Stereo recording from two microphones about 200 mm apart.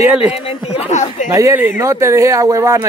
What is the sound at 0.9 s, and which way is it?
Speech, 35° left (ahead or behind).